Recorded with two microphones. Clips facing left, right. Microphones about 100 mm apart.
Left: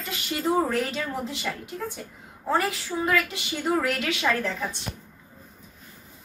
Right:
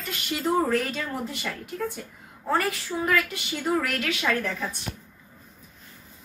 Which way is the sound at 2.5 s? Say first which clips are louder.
Even; 20° left (ahead or behind).